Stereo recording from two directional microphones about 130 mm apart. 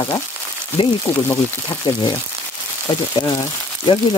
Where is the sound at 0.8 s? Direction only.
40° left (ahead or behind).